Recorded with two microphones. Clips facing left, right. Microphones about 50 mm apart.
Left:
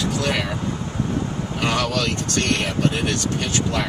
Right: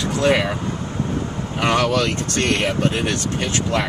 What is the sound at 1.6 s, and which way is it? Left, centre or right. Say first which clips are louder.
Speech: right 4 dB; right.